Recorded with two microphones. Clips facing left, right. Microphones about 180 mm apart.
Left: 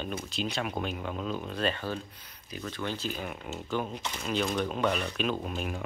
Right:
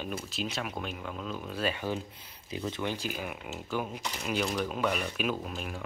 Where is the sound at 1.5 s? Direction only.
10° right (ahead or behind).